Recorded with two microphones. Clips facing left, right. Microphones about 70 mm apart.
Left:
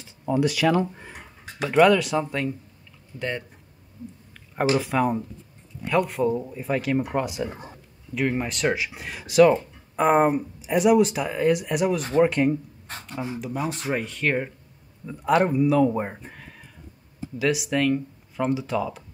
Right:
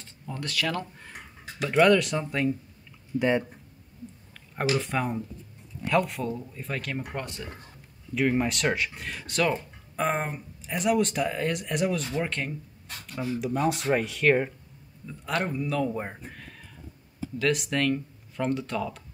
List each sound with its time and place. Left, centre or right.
0.3 s speech: centre
1.6 s speech: centre
3.2 s speech: centre
4.7 s speech: centre
8.1 s speech: centre
13.1 s speech: left
13.4 s speech: centre